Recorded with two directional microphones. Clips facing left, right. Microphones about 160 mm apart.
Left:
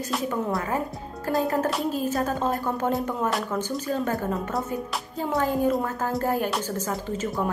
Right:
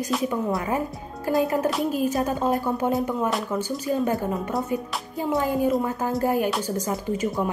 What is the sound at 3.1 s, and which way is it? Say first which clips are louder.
A woman's voice: right 2 dB; centre (ahead or behind).